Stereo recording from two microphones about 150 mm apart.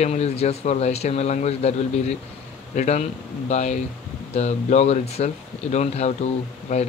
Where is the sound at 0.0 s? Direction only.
45° left (ahead or behind).